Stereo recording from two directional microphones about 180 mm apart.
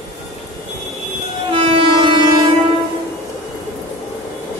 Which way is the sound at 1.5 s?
30° right (ahead or behind).